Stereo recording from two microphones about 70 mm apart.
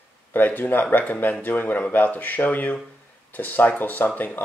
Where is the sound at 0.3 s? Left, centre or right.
Left.